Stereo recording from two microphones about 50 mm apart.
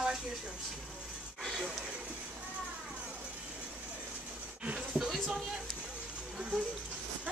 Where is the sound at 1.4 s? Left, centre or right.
Centre.